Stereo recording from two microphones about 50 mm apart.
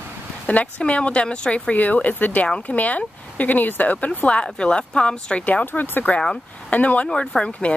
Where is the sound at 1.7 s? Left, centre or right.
Left.